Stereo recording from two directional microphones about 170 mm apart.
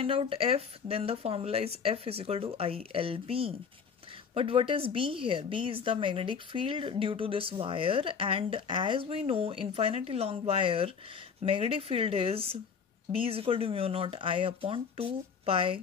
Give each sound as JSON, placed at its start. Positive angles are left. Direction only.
{"t": 0.0, "sound": "a woman's voice", "side_deg": -35}